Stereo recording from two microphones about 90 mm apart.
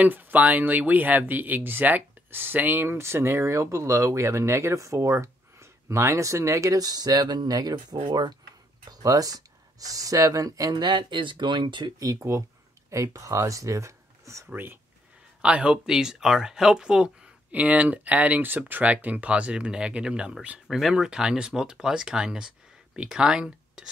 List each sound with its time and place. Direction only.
0.0 s speech: 20° right (ahead or behind); by 11.9 s 60° right (ahead or behind)
12.0 s speech: 35° right (ahead or behind)
14.5 s speech: 20° right (ahead or behind)
15.4 s speech: 10° right (ahead or behind)
20.6 s speech: centre (ahead or behind)